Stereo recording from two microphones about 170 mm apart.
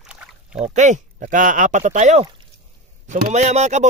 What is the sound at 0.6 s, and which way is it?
Speech, 45° right (ahead or behind).